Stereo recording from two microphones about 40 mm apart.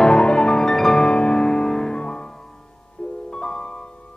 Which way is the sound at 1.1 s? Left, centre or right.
Left.